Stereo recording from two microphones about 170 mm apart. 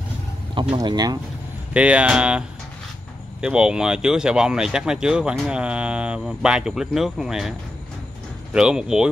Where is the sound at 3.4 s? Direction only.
5° right (ahead or behind).